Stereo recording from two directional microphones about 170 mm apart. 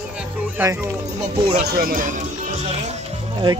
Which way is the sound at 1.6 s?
60° right (ahead or behind).